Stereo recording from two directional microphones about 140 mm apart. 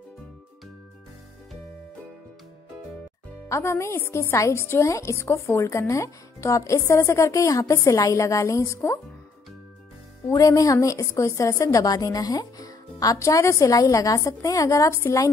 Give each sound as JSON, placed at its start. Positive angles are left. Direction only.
{"t": 3.4, "sound": "a woman's voice", "side_deg": 20}
{"t": 10.3, "sound": "a woman's voice", "side_deg": 25}